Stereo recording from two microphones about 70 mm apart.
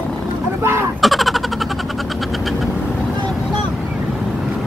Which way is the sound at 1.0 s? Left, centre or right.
Centre.